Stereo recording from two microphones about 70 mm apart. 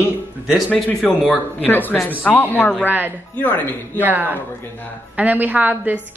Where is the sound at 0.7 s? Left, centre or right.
Centre.